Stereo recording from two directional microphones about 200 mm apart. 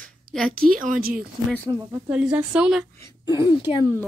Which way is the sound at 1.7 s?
15° right (ahead or behind).